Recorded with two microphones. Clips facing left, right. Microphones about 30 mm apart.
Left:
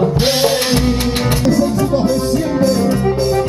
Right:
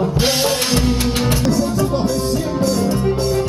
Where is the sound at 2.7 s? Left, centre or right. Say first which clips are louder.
Left 3 dB; left.